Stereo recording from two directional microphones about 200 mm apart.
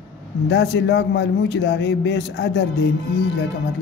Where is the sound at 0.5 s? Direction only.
55° left (ahead or behind).